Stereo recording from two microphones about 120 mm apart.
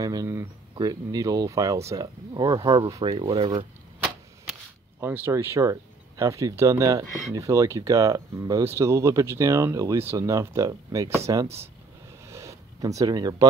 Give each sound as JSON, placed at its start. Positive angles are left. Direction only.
{"t": 0.0, "sound": "speech", "side_deg": -30}
{"t": 3.0, "sound": "speech", "side_deg": -50}
{"t": 5.0, "sound": "speech", "side_deg": -20}
{"t": 12.3, "sound": "a sound", "side_deg": -25}